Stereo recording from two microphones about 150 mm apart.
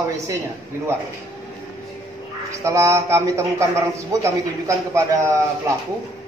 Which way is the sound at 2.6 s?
20° right (ahead or behind).